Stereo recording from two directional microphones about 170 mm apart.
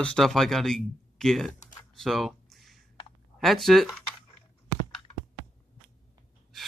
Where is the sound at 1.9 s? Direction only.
Centre (ahead or behind).